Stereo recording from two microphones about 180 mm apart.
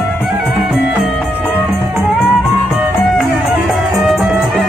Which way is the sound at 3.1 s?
Centre (ahead or behind).